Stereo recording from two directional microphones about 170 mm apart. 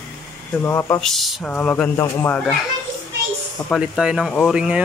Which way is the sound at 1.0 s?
Centre (ahead or behind).